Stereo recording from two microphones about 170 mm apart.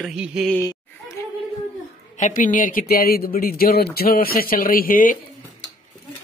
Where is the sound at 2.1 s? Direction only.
50° left (ahead or behind).